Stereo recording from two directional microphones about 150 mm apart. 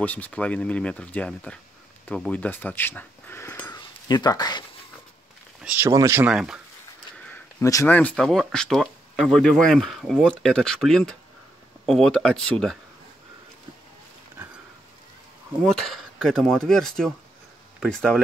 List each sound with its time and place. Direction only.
0.0 s speech: 10° left (ahead or behind)
3.7 s a sound: 25° left (ahead or behind)
5.6 s speech: 10° right (ahead or behind)
5.9 s speech: 20° right (ahead or behind)
6.3 s speech: 5° right (ahead or behind)
7.6 s speech: 20° left (ahead or behind); by 12.7 s 5° left (ahead or behind)
15.6 s speech: centre (ahead or behind)